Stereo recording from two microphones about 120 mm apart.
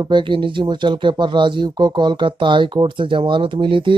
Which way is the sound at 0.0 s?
40° right (ahead or behind).